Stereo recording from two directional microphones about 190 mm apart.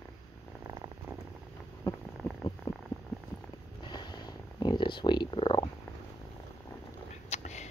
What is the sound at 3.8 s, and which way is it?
Purr, 25° left (ahead or behind).